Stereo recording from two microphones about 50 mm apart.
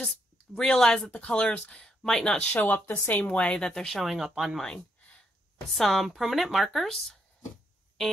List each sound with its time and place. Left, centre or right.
0.0 s speech: centre
2.3 s speech: left
3.4 s speech: centre
4.0 s speech: centre
4.6 s a sound: centre
5.7 s speech: centre
6.9 s speech: centre